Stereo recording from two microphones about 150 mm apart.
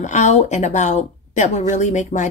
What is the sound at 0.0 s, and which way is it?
A woman's voice, 50° left (ahead or behind).